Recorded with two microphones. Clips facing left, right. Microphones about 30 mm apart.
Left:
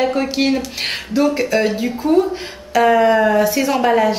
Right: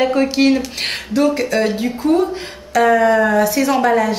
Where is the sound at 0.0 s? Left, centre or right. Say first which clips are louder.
Right 3 dB; centre.